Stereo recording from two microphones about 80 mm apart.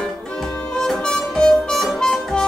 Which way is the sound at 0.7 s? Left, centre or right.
Centre.